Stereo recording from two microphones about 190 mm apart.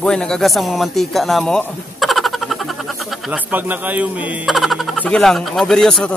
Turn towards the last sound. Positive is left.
turn(degrees=5)  # may be behind; listen again after turning